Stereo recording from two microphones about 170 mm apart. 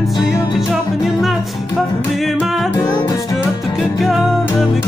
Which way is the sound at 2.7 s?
25° left (ahead or behind).